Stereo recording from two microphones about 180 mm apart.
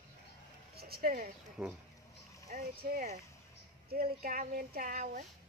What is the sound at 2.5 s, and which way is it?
A woman's voice, 45° right (ahead or behind).